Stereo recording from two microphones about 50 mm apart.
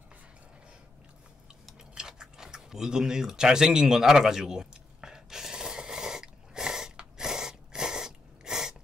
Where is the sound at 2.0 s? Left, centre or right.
Centre.